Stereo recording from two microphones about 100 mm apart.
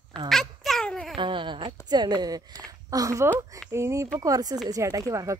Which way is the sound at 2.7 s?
35° right (ahead or behind).